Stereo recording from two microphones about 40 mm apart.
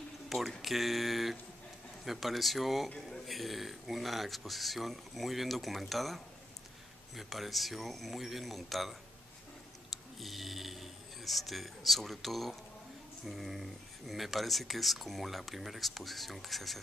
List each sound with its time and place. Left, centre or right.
0.3 s speech: centre